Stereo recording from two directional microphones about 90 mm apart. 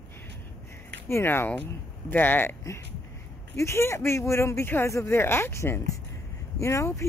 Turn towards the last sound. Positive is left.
turn(degrees=35)  # may be behind; listen again after turning